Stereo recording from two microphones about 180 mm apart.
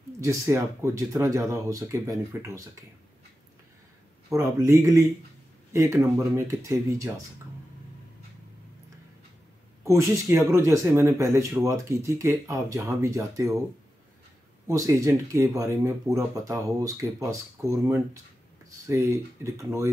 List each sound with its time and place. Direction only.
0.2 s speech: 15° right (ahead or behind)
4.3 s speech: 20° right (ahead or behind)
9.8 s speech: 15° right (ahead or behind)
14.7 s speech: 20° right (ahead or behind)